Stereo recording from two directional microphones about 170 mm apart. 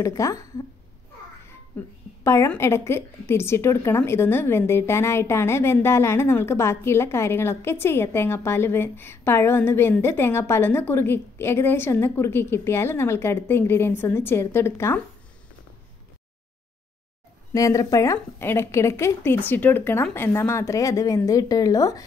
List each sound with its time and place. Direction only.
0.0 s speech: 20° left (ahead or behind)
1.8 s a woman's voice: 10° left (ahead or behind)
17.5 s a woman's voice: 20° left (ahead or behind)